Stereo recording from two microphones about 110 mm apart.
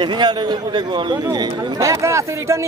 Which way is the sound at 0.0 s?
45° right (ahead or behind).